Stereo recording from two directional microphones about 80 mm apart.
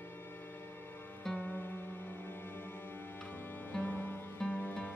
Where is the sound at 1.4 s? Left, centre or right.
Left.